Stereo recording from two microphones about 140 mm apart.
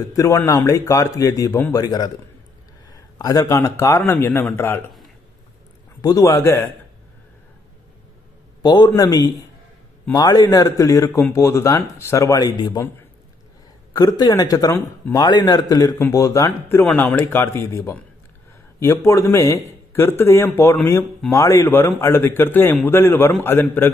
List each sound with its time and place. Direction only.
0.1 s speech: 25° left (ahead or behind)
5.9 s speech: 25° left (ahead or behind)
8.6 s speech: 30° left (ahead or behind)
13.9 s speech: 30° left (ahead or behind)